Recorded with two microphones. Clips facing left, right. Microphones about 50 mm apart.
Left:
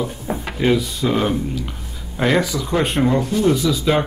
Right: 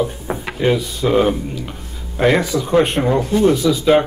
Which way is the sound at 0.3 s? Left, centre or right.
Right.